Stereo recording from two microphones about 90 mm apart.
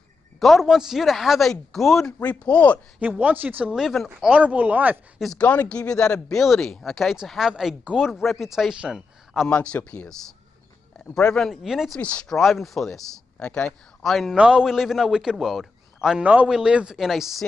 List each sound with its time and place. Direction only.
0.4 s speech: centre (ahead or behind)
2.1 s speech: 15° left (ahead or behind)
3.0 s speech: 15° right (ahead or behind)
3.7 s speech: centre (ahead or behind)
4.2 s speech: 10° right (ahead or behind)
5.4 s speech: 15° left (ahead or behind); by 9.5 s 5° right (ahead or behind)
9.5 s speech: 15° left (ahead or behind)
11.1 s speech: 10° left (ahead or behind)
11.5 s speech: 5° right (ahead or behind)
12.0 s speech: 15° left (ahead or behind)
12.4 s speech: centre (ahead or behind)
14.3 s speech: 10° right (ahead or behind)